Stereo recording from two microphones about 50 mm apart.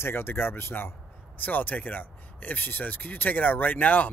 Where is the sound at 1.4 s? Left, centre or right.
Left.